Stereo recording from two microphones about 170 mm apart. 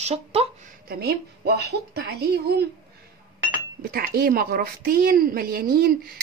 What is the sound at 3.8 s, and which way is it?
A woman's voice, 65° right (ahead or behind).